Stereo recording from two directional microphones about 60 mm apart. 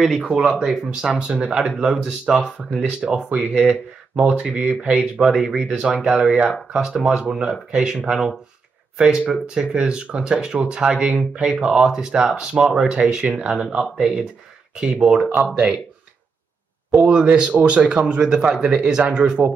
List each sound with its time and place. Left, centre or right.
0.0 s speech: centre
17.1 s speech: centre